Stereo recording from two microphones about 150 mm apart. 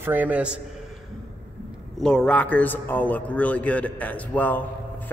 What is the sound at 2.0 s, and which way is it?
A man's voice, 5° left (ahead or behind).